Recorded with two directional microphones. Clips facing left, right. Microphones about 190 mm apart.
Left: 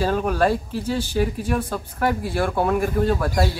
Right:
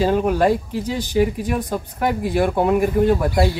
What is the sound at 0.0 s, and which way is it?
Speech, 15° right (ahead or behind).